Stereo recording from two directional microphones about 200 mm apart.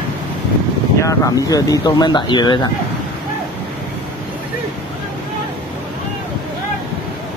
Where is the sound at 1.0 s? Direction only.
15° left (ahead or behind).